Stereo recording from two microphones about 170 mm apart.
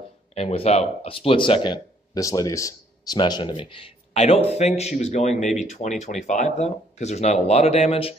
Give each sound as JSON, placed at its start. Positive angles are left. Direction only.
{"t": 0.3, "sound": "speech", "side_deg": 40}